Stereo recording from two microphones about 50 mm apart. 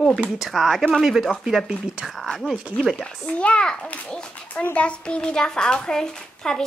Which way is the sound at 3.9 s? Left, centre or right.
Left.